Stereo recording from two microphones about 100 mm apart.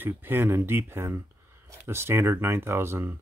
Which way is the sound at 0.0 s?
20° right (ahead or behind).